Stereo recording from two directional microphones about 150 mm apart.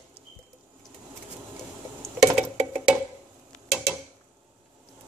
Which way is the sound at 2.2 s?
5° right (ahead or behind).